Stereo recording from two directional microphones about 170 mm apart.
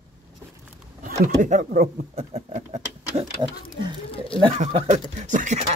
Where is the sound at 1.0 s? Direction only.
50° right (ahead or behind).